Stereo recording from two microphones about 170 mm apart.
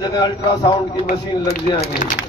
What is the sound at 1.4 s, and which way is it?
Speech, 65° left (ahead or behind).